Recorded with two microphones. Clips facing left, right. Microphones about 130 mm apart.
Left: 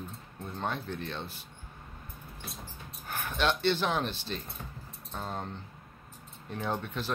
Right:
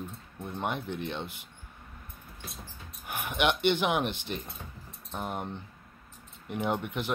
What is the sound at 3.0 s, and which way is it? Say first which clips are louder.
Speech: right 2 dB; 15° right (ahead or behind).